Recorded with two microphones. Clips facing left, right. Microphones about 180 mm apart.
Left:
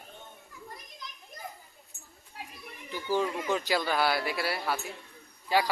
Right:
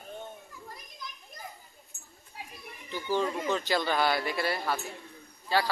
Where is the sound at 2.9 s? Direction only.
10° left (ahead or behind).